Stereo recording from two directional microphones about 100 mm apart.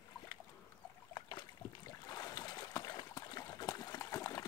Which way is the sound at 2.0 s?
40° left (ahead or behind).